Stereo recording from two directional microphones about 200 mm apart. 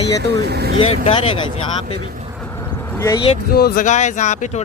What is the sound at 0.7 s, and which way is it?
Speech, 30° left (ahead or behind).